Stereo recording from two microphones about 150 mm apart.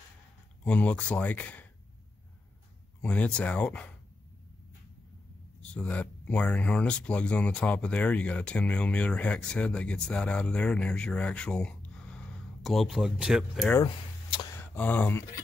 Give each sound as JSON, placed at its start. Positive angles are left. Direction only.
{"t": 0.7, "sound": "speech", "side_deg": 10}
{"t": 3.0, "sound": "speech", "side_deg": 10}
{"t": 5.6, "sound": "speech", "side_deg": 10}
{"t": 13.8, "sound": "a sound", "side_deg": 30}
{"t": 14.6, "sound": "speech", "side_deg": 10}